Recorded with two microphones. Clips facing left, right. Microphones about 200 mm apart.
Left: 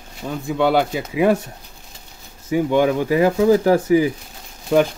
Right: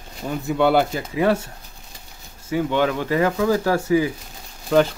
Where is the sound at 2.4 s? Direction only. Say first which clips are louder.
Left 4 dB; 15° left (ahead or behind).